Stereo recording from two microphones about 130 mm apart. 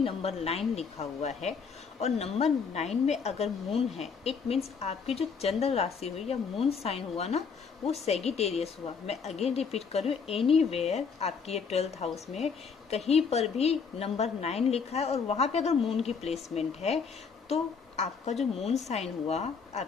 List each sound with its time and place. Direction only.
0.0 s a woman's voice: 50° left (ahead or behind)